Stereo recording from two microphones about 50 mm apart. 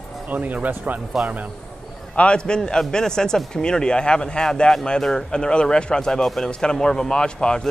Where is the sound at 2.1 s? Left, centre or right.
Centre.